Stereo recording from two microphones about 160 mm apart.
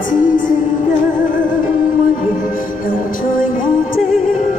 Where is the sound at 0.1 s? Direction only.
55° left (ahead or behind).